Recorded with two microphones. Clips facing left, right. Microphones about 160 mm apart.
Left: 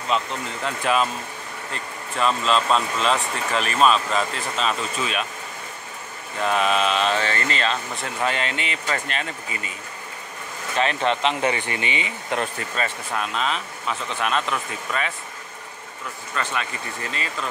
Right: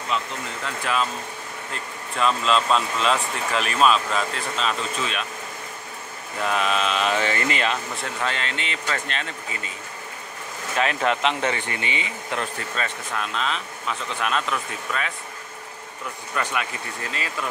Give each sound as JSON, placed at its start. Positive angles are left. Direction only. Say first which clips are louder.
{"t": 0.1, "sound": "speech", "louder": "left 3 dB", "side_deg": 25}
{"t": 1.7, "sound": "speech", "louder": "left 2 dB", "side_deg": 0}
{"t": 6.5, "sound": "speech", "louder": "left 3 dB", "side_deg": 0}
{"t": 7.1, "sound": "speech", "louder": "even", "side_deg": -15}
{"t": 8.2, "sound": "speech", "louder": "left 5 dB", "side_deg": 15}
{"t": 10.8, "sound": "speech", "louder": "left 1 dB", "side_deg": -5}
{"t": 11.4, "sound": "speech", "louder": "left 2 dB", "side_deg": 15}
{"t": 12.7, "sound": "speech", "louder": "left 2 dB", "side_deg": 5}
{"t": 16.4, "sound": "speech", "louder": "right 1 dB", "side_deg": -10}